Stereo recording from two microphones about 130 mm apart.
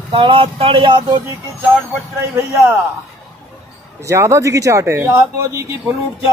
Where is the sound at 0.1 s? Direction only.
40° right (ahead or behind).